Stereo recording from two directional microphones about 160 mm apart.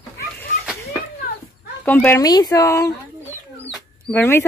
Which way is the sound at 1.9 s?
10° left (ahead or behind).